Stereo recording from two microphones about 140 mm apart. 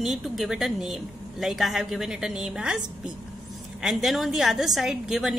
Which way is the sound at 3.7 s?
Centre (ahead or behind).